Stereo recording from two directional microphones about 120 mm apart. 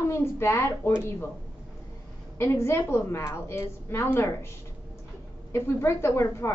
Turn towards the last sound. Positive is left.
turn(degrees=20)  # may be behind; listen again after turning